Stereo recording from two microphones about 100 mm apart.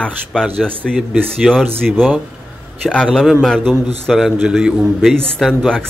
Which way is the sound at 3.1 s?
5° right (ahead or behind).